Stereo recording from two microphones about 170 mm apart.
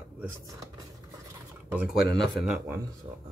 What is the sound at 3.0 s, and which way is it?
Speech, 45° right (ahead or behind).